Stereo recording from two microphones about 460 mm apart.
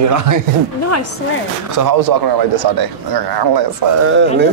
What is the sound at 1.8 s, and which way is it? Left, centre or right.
Speech, right.